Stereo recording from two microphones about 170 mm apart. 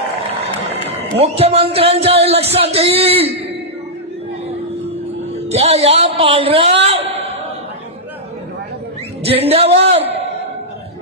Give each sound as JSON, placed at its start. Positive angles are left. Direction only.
{"t": 1.1, "sound": "speech", "side_deg": -35}
{"t": 5.5, "sound": "a man's voice", "side_deg": -35}
{"t": 9.2, "sound": "a sound", "side_deg": -35}